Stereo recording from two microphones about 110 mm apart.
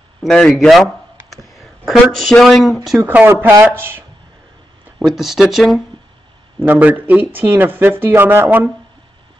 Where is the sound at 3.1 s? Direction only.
15° right (ahead or behind).